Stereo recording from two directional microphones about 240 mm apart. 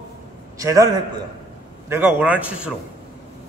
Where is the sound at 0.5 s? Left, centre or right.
Centre.